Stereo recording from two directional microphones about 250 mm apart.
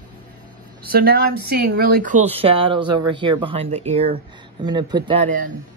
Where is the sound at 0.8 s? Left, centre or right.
Right.